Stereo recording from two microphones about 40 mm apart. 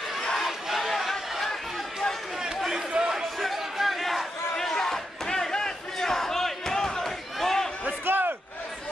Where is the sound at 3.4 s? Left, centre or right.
Centre.